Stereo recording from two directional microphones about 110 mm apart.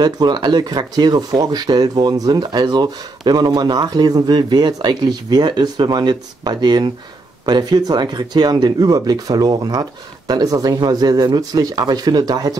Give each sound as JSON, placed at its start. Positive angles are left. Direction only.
{"t": 0.0, "sound": "speech", "side_deg": -40}